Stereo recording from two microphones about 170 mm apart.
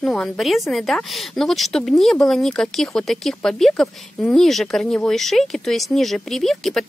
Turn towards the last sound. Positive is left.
turn(degrees=0)  # may be behind; listen again after turning